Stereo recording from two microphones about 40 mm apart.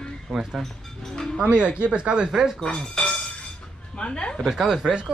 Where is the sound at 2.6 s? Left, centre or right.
Left.